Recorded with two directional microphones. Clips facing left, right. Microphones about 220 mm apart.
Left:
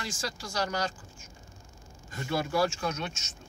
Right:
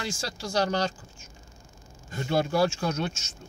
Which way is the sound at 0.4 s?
30° right (ahead or behind).